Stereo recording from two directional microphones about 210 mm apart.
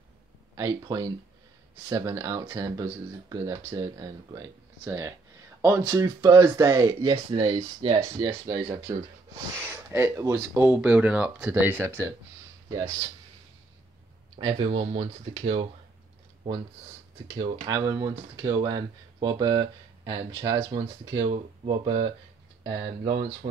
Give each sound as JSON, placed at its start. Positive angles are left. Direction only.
{"t": 0.6, "sound": "speech", "side_deg": -15}
{"t": 14.4, "sound": "speech", "side_deg": -25}
{"t": 17.4, "sound": "speech", "side_deg": -20}